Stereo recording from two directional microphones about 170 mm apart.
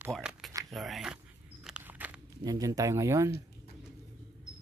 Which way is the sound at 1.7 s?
10° right (ahead or behind).